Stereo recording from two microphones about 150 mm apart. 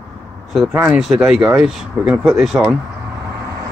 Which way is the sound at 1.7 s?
5° right (ahead or behind).